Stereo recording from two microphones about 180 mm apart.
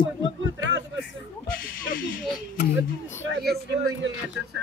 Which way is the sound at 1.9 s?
50° left (ahead or behind).